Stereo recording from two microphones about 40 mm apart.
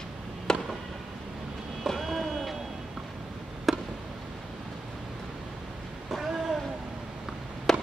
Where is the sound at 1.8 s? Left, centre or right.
Centre.